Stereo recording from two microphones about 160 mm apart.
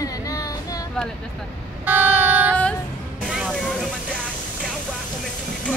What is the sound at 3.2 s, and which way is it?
Music, centre (ahead or behind).